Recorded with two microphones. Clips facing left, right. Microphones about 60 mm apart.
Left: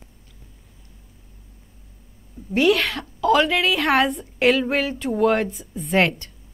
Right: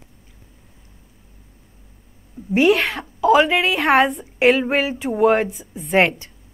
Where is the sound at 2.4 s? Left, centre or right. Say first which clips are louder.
Right 5 dB; right.